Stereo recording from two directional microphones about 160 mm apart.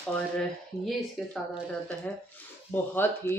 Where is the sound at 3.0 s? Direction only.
15° left (ahead or behind).